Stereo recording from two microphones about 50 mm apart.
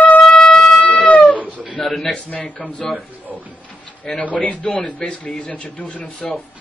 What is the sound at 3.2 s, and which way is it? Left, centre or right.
Speech, right.